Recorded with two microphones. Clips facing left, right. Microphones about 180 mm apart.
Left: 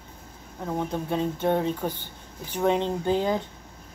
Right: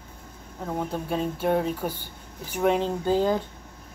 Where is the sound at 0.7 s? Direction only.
10° right (ahead or behind).